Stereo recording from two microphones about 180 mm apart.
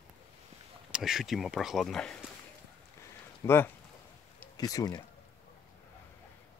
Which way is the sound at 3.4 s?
10° left (ahead or behind).